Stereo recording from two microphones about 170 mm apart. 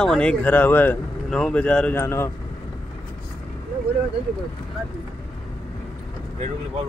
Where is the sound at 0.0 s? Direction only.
5° left (ahead or behind).